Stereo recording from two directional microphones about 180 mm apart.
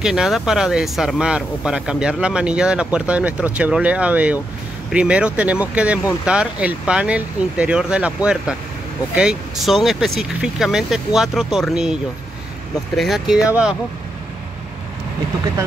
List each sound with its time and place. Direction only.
0.0 s speech: 5° right (ahead or behind)